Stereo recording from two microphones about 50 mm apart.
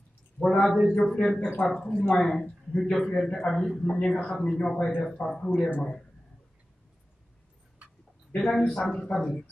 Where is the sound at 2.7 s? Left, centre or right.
Centre.